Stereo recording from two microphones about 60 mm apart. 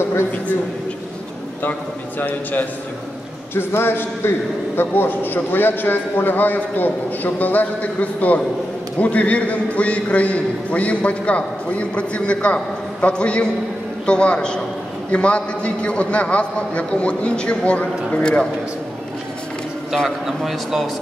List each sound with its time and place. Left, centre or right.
1.6 s a man's voice: left; by 18.5 s centre
20.2 s speech: centre